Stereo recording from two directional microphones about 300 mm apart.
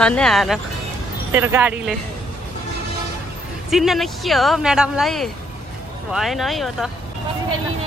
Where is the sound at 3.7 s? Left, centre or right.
Centre.